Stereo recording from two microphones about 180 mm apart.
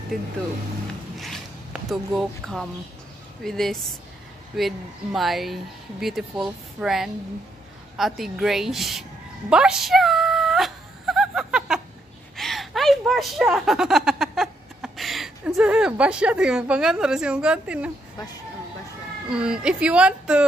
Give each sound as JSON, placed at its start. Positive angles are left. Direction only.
{"t": 1.1, "sound": "zipper", "side_deg": 0}
{"t": 3.4, "sound": "speech", "side_deg": 0}
{"t": 9.5, "sound": "whimper", "side_deg": -5}
{"t": 12.4, "sound": "a sound", "side_deg": 0}
{"t": 18.1, "sound": "speech", "side_deg": 20}
{"t": 19.2, "sound": "speech", "side_deg": -5}